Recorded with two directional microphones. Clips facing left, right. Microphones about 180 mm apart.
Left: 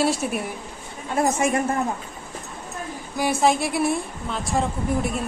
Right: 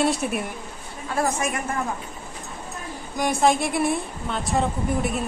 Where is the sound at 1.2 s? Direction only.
25° left (ahead or behind).